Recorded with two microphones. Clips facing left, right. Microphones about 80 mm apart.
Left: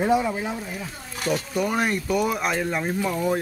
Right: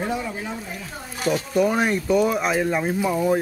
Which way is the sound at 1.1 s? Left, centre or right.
Centre.